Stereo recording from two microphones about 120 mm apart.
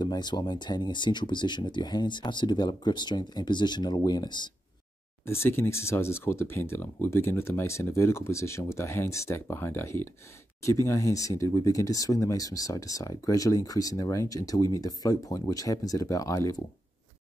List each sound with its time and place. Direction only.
0.0 s speech: 35° left (ahead or behind)
5.2 s speech: 20° left (ahead or behind)